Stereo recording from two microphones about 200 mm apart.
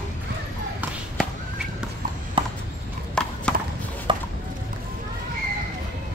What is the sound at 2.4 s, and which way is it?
Clip-clop, 25° right (ahead or behind).